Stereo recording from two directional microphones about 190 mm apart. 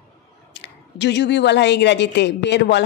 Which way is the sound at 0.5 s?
65° left (ahead or behind).